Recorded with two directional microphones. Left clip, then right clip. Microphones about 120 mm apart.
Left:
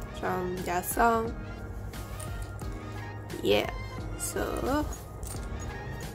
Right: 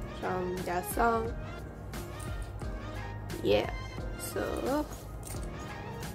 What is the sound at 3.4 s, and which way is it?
Speech, 10° left (ahead or behind).